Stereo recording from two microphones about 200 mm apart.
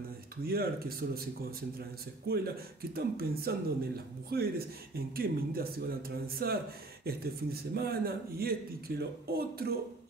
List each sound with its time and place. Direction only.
0.5 s a man's voice: 50° right (ahead or behind)
2.2 s a man's voice: 50° right (ahead or behind)